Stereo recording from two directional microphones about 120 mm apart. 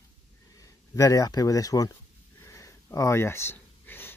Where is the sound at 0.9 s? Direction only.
30° left (ahead or behind).